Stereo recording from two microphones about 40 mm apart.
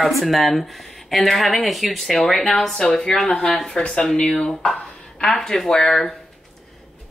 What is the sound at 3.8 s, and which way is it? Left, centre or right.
Speech, left.